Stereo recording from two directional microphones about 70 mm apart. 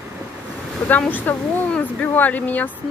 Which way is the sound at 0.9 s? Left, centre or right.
Left.